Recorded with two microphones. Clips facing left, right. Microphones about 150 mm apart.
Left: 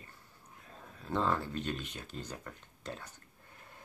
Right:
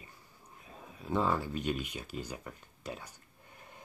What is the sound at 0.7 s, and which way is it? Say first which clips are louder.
Speech: right 3 dB; 10° right (ahead or behind).